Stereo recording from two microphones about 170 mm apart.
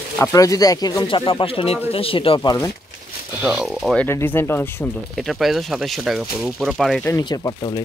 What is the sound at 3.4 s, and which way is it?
Speech, centre (ahead or behind).